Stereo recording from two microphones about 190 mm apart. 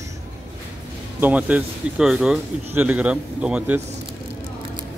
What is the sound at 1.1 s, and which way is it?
Speech, 10° right (ahead or behind).